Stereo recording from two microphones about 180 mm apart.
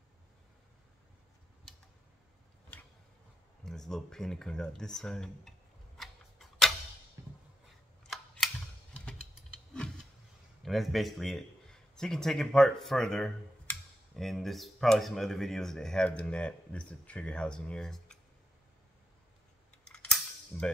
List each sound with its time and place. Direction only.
3.6 s speech: 5° left (ahead or behind)
5.9 s tick-tock: centre (ahead or behind)
9.0 s vehicle: 5° left (ahead or behind)
10.6 s speech: centre (ahead or behind)
19.7 s cap gun: 5° left (ahead or behind)